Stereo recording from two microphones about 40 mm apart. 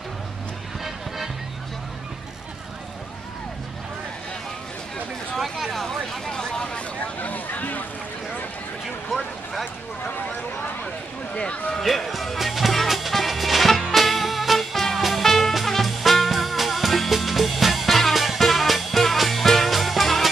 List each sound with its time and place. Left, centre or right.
0.8 s music: centre
5.3 s speech: centre
5.9 s speech: centre
7.0 s a sound: left
11.8 s music: centre